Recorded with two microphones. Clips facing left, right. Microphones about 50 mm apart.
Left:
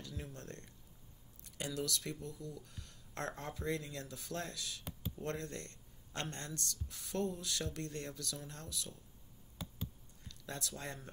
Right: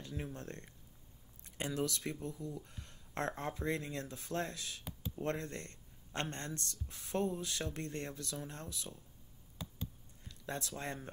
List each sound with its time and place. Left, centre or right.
0.0 s speech: right
9.6 s a sound: centre
10.2 s speech: right